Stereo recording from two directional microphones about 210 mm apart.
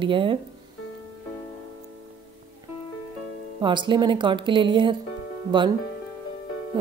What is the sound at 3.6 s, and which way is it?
Speech, 20° right (ahead or behind).